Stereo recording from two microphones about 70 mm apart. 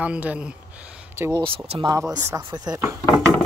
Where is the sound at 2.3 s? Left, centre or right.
Right.